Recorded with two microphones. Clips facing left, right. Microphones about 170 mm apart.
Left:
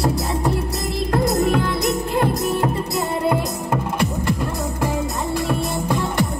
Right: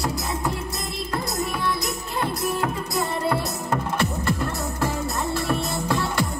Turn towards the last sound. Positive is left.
turn(degrees=15)  # may be behind; listen again after turning